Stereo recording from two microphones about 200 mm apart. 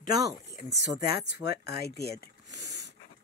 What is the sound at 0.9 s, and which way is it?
Speech, 50° left (ahead or behind).